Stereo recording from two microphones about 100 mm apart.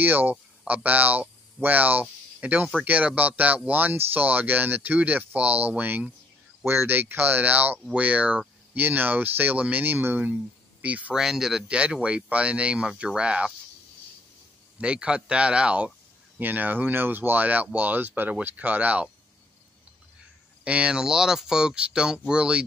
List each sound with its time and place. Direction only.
0.0 s speech: 20° right (ahead or behind)
11.2 s speech: 5° right (ahead or behind)
14.8 s speech: 10° right (ahead or behind)
20.6 s speech: 10° right (ahead or behind)